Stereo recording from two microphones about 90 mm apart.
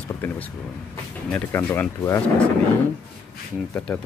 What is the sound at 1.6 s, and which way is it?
Speech, 20° left (ahead or behind).